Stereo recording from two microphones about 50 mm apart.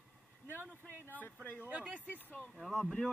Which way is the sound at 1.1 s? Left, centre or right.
Left.